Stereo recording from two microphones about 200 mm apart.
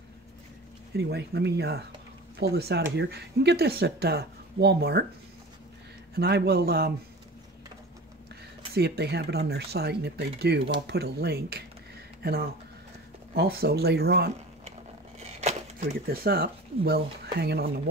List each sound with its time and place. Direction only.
0.9 s speech: 55° right (ahead or behind)
6.1 s speech: 55° right (ahead or behind)
8.7 s speech: 55° right (ahead or behind)
15.1 s a sound: 35° right (ahead or behind)
16.1 s speech: 50° right (ahead or behind)